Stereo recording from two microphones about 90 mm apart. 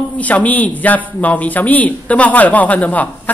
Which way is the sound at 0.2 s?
15° left (ahead or behind).